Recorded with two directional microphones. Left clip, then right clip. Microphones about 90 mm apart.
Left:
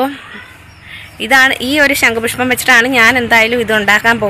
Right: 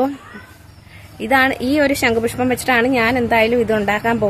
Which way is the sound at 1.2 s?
15° right (ahead or behind).